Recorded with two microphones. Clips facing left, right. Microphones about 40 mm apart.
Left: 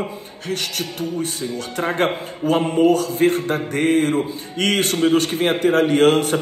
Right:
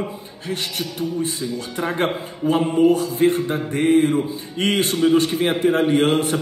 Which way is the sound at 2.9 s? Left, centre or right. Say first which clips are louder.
Left 1 dB; left.